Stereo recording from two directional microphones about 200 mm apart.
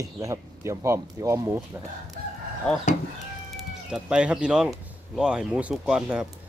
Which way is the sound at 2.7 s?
5° left (ahead or behind).